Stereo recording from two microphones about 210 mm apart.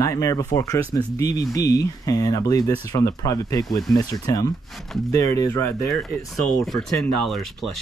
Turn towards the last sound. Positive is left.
turn(degrees=0)  # may be behind; listen again after turning